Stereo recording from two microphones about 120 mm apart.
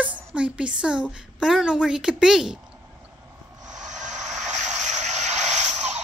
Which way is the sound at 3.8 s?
80° right.